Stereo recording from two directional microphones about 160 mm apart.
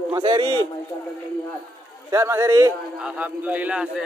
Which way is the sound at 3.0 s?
10° right (ahead or behind).